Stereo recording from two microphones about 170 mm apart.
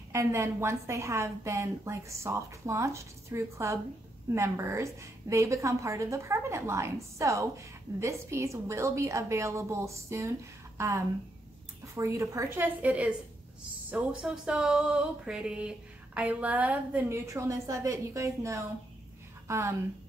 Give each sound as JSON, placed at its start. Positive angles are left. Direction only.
{"t": 0.1, "sound": "a woman's voice", "side_deg": -15}
{"t": 13.8, "sound": "a sound", "side_deg": -5}
{"t": 16.2, "sound": "a woman's voice", "side_deg": -10}